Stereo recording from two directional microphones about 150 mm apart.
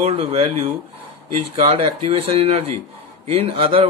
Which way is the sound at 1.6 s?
40° right (ahead or behind).